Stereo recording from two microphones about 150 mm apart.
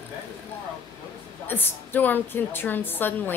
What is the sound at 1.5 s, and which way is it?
Speech, 15° left (ahead or behind).